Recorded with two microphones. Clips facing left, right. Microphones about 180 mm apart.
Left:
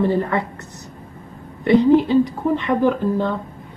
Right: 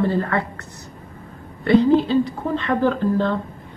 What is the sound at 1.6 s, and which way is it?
Speech, 15° left (ahead or behind).